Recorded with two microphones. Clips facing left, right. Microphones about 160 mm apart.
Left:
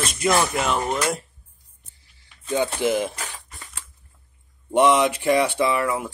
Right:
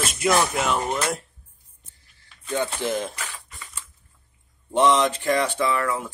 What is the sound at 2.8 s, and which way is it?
Speech, 10° left (ahead or behind).